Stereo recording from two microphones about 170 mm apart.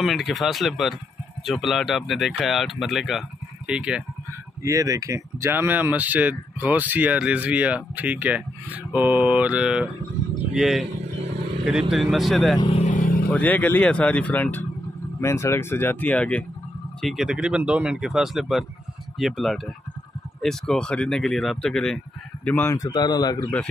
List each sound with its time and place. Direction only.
0.0 s speech: centre (ahead or behind)
4.6 s speech: 20° right (ahead or behind); by 12.5 s centre (ahead or behind)
12.5 s vehicle: 35° left (ahead or behind)
12.9 s vehicle: 55° left (ahead or behind)
13.3 s speech: 10° left (ahead or behind)